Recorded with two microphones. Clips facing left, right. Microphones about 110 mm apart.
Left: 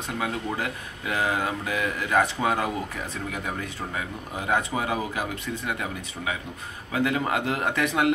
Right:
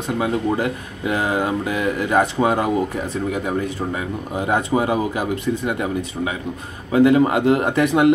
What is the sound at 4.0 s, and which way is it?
Speech, 20° right (ahead or behind).